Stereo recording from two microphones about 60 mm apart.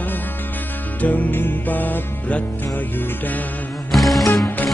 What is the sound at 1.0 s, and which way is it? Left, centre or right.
Music, left.